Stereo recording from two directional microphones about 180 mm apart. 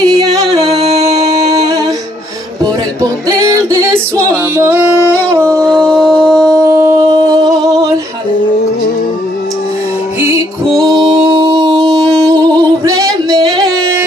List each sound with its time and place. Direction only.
0.2 s yodeling: 20° right (ahead or behind)
0.7 s singing: 35° right (ahead or behind)
1.0 s music: 20° right (ahead or behind)
4.2 s female singing: 15° right (ahead or behind)
5.6 s music: 5° left (ahead or behind)
6.4 s music: 15° right (ahead or behind)
10.2 s music: 15° right (ahead or behind)
10.8 s music: centre (ahead or behind)
11.2 s singing: 25° right (ahead or behind)